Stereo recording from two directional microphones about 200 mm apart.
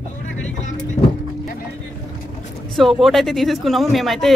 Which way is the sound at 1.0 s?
30° left (ahead or behind).